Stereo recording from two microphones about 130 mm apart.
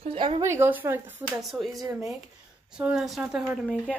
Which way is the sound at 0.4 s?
20° right (ahead or behind).